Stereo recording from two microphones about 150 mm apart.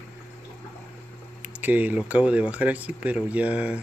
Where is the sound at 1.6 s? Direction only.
10° right (ahead or behind).